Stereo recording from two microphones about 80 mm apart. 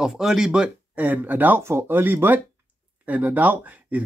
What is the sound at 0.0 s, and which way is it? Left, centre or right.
Speech, centre.